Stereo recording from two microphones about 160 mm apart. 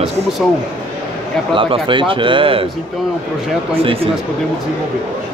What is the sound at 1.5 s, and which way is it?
Speech, 30° right (ahead or behind).